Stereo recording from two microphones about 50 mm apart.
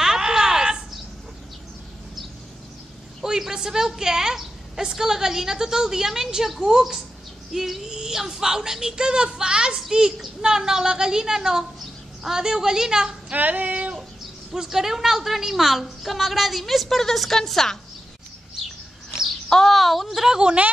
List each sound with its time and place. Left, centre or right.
0.0 s a sound: centre
3.3 s speech: centre
13.3 s female singing: right
14.5 s a woman's voice: centre
19.2 s speech: centre
20.2 s speech: centre